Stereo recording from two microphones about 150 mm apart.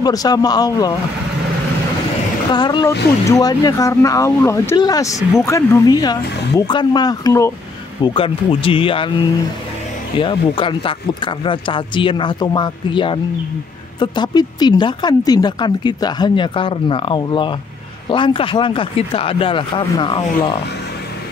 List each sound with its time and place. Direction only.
0.0 s speech: 25° left (ahead or behind)
2.5 s speech: 30° left (ahead or behind)
8.0 s speech: 35° left (ahead or behind)
10.1 s speech: 35° left (ahead or behind)